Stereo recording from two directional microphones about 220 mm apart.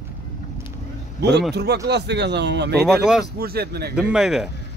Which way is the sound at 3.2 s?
45° right (ahead or behind).